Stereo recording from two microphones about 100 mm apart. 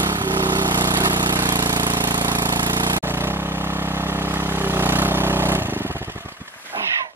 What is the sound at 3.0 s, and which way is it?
Vehicle, 25° right (ahead or behind).